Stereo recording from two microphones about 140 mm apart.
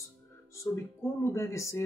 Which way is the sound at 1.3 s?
20° left (ahead or behind).